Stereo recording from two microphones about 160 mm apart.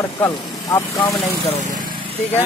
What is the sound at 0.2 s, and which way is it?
Speech, 20° left (ahead or behind).